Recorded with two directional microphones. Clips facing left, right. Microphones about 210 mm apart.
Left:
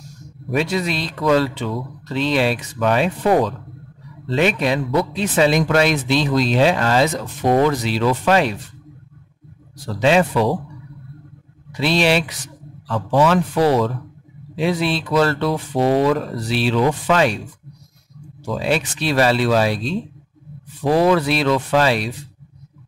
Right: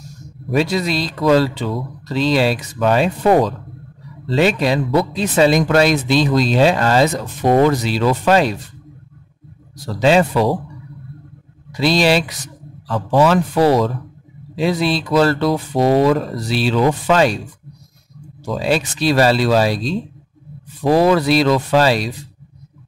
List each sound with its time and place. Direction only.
0.6 s speech: 35° right (ahead or behind)
9.9 s speech: 35° right (ahead or behind)
11.7 s speech: 40° right (ahead or behind)
18.4 s speech: 40° right (ahead or behind)